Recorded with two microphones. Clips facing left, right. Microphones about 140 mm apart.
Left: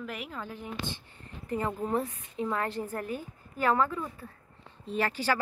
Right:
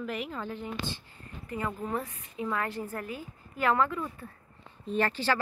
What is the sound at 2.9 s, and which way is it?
Speech, 45° left (ahead or behind).